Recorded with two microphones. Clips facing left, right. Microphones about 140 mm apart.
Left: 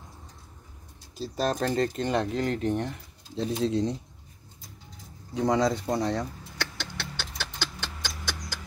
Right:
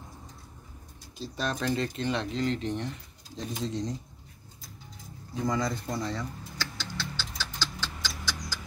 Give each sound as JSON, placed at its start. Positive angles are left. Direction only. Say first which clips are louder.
{"t": 1.1, "sound": "speech", "louder": "left 5 dB", "side_deg": 40}
{"t": 5.3, "sound": "vehicle", "louder": "left 6 dB", "side_deg": 80}